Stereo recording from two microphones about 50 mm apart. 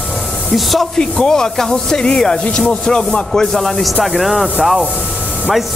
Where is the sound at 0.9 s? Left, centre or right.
Centre.